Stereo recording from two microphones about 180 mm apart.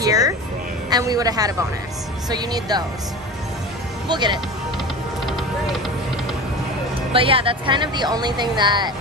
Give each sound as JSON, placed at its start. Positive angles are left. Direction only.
{"t": 0.0, "sound": "speech", "side_deg": -20}
{"t": 4.1, "sound": "speech", "side_deg": -25}
{"t": 5.2, "sound": "vehicle", "side_deg": 0}
{"t": 7.1, "sound": "speech", "side_deg": -30}